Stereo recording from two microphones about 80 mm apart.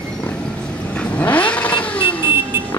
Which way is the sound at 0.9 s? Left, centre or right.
Centre.